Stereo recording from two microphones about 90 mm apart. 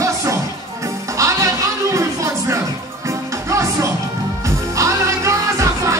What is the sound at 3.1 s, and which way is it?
Music, 35° right (ahead or behind).